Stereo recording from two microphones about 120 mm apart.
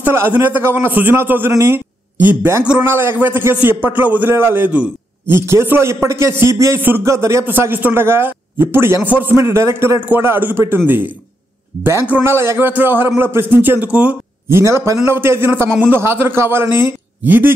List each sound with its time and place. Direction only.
0.0 s a man's voice: 20° right (ahead or behind)
14.5 s a man's voice: 25° right (ahead or behind)